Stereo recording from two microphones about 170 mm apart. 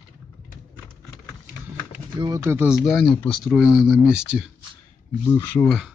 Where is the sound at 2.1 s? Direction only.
20° right (ahead or behind).